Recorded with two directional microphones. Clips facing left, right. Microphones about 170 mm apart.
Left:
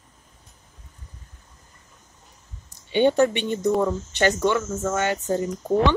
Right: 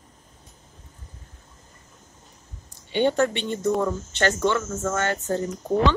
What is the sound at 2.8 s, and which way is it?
Speech, 15° left (ahead or behind).